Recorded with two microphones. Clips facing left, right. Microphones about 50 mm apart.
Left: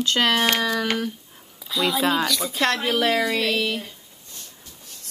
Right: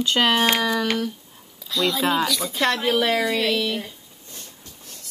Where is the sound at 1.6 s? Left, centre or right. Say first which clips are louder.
Even; centre.